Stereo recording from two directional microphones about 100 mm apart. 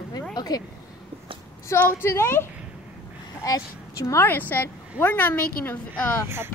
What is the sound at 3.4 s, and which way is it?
Speech, 35° left (ahead or behind).